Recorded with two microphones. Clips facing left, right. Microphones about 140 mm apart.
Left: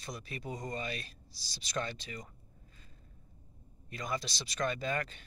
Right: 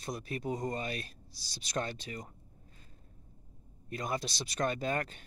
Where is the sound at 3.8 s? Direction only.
50° right (ahead or behind).